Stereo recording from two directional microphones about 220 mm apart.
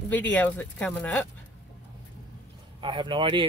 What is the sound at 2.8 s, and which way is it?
Speech, 20° right (ahead or behind).